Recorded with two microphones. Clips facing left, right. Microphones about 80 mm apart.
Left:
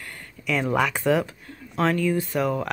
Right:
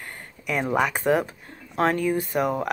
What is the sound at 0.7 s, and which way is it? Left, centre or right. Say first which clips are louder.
Speech: right 1 dB; right.